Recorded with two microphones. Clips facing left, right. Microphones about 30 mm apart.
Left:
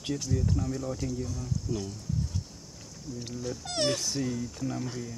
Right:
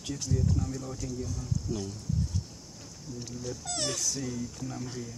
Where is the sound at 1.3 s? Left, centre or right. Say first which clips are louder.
Left 1 dB; centre.